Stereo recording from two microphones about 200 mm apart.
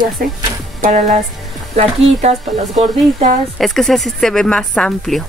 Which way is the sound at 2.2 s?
35° right (ahead or behind).